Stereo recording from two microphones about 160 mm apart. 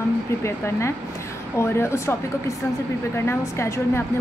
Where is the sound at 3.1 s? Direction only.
15° left (ahead or behind).